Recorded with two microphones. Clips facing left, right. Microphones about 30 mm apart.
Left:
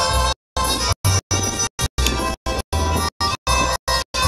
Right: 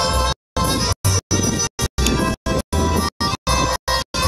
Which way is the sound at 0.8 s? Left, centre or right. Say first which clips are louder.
Even; centre.